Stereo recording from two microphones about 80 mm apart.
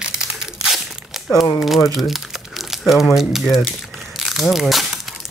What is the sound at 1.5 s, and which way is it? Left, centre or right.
Speech, centre.